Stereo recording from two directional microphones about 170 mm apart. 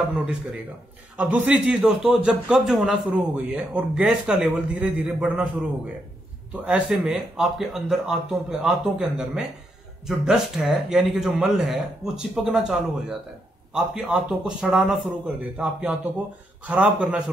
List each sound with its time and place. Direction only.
0.1 s a man's voice: 5° right (ahead or behind)